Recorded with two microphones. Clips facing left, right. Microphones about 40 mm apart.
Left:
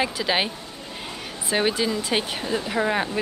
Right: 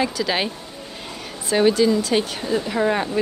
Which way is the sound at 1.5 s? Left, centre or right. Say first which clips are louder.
Right 6 dB; centre.